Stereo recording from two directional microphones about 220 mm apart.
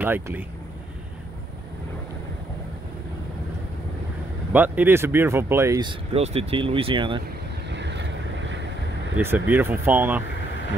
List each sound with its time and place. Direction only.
0.0 s speech: 10° right (ahead or behind)
4.5 s speech: 10° right (ahead or behind); by 7.2 s 25° right (ahead or behind)
7.7 s boat: 55° right (ahead or behind)
9.1 s speech: 10° right (ahead or behind)